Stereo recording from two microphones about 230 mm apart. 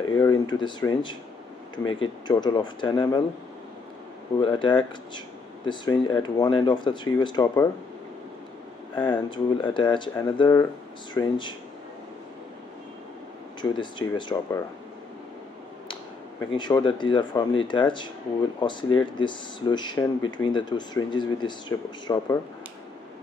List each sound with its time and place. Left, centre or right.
0.2 s speech: centre
4.4 s speech: left
8.9 s speech: left
13.6 s speech: left
16.3 s speech: centre